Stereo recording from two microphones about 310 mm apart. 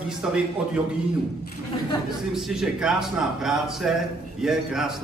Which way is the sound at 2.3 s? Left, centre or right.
Centre.